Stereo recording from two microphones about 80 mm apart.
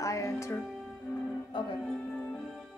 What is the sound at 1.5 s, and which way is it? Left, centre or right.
Speech, left.